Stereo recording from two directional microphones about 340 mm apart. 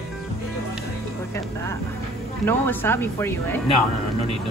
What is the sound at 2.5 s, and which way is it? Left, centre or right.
Speech, centre.